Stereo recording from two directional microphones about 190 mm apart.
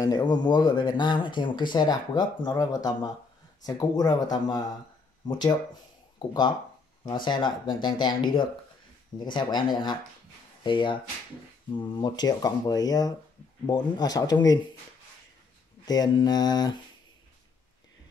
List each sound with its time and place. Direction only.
0.0 s speech: 20° left (ahead or behind)
15.8 s speech: 20° left (ahead or behind)